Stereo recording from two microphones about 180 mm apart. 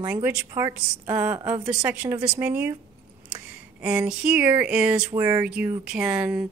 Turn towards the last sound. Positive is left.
turn(degrees=-5)  # may be behind; listen again after turning